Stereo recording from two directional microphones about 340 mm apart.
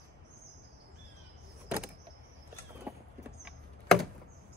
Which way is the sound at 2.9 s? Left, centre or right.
Centre.